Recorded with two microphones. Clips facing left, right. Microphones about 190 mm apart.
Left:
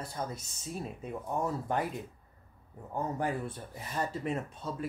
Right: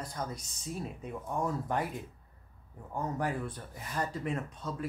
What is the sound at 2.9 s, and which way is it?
Speech, 25° left (ahead or behind).